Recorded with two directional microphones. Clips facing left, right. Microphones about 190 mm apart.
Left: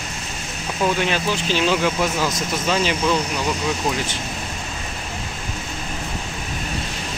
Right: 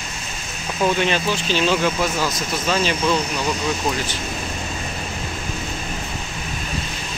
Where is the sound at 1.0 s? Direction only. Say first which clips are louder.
Right 1 dB; 10° left (ahead or behind).